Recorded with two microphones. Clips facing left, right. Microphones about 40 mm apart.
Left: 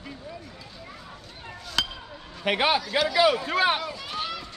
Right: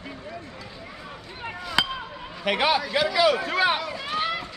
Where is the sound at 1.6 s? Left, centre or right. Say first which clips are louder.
Right 4 dB; right.